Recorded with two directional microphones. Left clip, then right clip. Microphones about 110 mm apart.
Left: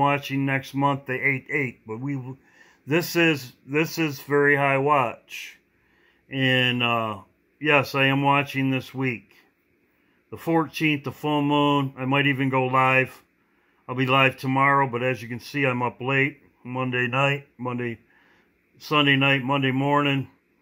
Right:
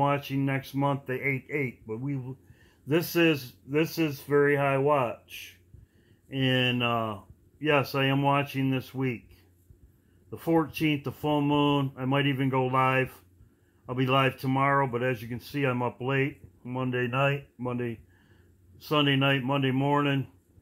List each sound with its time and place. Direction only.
0.0 s speech: 20° left (ahead or behind)